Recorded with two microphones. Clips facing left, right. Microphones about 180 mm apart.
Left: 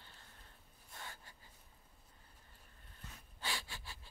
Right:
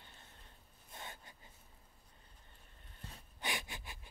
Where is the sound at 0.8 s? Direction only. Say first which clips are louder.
Right 2 dB; 20° right (ahead or behind).